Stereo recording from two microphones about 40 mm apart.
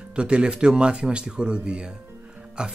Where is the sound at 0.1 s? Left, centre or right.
Right.